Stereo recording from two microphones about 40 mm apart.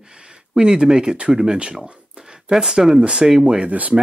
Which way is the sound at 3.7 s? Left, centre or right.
Right.